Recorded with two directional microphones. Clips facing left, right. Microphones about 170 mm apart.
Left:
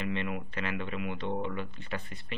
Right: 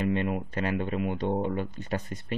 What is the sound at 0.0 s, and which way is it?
Speech, 45° right (ahead or behind).